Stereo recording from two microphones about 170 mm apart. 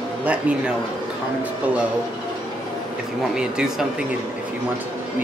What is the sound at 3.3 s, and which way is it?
Speech, 5° right (ahead or behind).